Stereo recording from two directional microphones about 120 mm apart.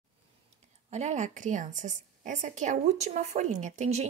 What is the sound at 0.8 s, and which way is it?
A woman's voice, 70° right (ahead or behind).